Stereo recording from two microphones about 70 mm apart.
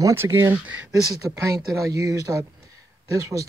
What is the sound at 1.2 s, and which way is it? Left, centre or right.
Speech, right.